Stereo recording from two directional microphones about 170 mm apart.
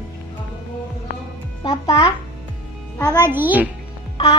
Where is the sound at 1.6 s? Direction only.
35° left (ahead or behind).